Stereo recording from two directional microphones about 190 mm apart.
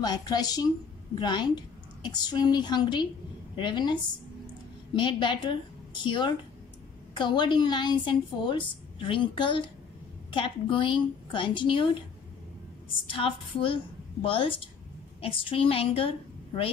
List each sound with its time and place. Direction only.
0.0 s a woman's voice: 20° left (ahead or behind)
13.0 s a woman's voice: 30° left (ahead or behind)